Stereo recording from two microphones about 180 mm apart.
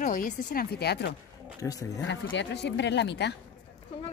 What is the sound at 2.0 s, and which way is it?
Speech, 85° left.